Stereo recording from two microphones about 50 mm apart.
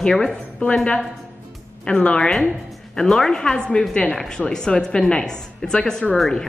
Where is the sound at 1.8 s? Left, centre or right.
Left.